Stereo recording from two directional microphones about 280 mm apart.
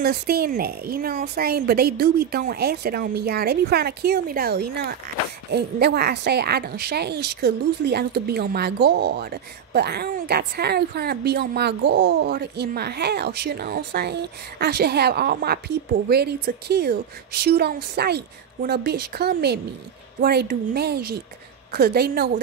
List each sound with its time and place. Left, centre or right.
0.0 s a woman's voice: right